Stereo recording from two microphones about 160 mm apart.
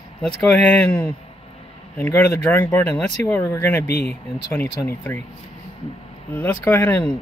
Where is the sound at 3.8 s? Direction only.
85° left.